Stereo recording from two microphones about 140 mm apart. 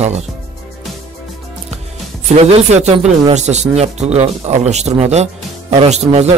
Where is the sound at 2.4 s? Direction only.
50° right (ahead or behind).